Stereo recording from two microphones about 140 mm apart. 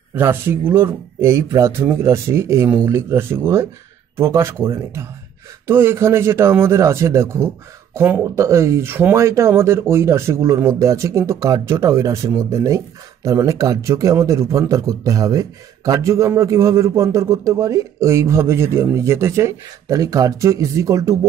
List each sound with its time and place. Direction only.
0.1 s a man's voice: 15° right (ahead or behind)